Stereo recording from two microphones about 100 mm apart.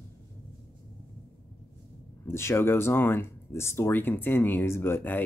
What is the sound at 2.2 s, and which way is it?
Speech, 25° left (ahead or behind).